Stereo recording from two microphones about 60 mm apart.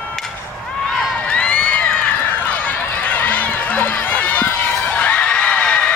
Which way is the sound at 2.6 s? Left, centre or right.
Left.